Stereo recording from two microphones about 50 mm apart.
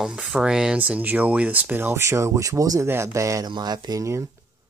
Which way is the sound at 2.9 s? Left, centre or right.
Right.